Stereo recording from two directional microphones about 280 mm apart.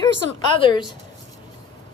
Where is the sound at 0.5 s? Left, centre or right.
Centre.